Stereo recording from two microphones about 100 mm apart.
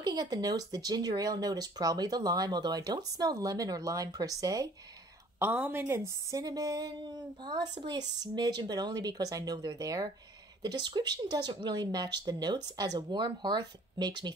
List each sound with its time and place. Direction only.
0.0 s speech: 45° right (ahead or behind)
5.4 s a woman's voice: 20° right (ahead or behind); by 14.3 s 45° right (ahead or behind)